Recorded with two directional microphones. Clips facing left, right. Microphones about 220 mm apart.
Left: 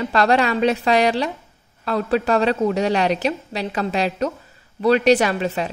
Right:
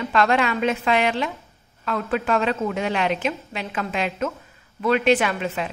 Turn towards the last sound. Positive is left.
turn(degrees=35)  # may be behind; listen again after turning